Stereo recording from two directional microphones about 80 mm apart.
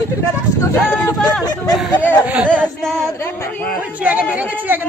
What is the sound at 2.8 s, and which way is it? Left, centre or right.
Female singing, centre.